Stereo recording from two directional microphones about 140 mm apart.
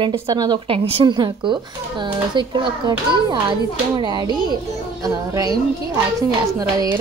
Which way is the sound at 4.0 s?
30° right (ahead or behind).